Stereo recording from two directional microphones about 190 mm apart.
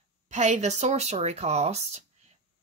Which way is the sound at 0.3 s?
40° right (ahead or behind).